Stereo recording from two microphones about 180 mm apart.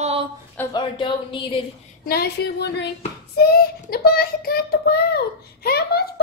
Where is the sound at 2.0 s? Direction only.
60° left (ahead or behind).